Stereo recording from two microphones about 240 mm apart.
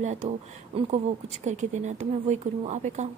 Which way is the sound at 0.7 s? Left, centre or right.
Right.